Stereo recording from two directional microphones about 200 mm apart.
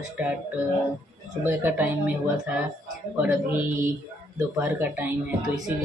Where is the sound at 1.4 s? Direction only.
10° right (ahead or behind).